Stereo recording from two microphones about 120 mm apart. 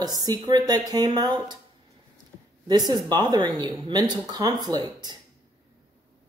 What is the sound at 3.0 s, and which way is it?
Speech, 35° right (ahead or behind).